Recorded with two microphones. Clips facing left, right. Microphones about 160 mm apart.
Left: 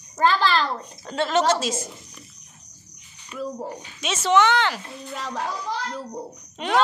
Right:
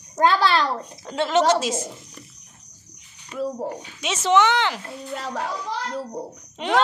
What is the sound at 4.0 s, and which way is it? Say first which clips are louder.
Speech: even; 15° right (ahead or behind).